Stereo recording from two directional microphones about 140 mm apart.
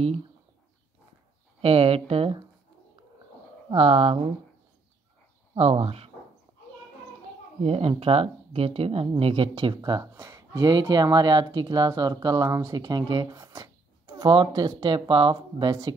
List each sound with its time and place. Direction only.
1.6 s speech: 45° right (ahead or behind)
3.7 s speech: 45° right (ahead or behind)
5.5 s speech: 45° right (ahead or behind)
7.6 s speech: 45° right (ahead or behind)